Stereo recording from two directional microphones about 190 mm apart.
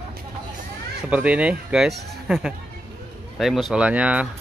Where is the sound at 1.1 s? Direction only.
5° right (ahead or behind).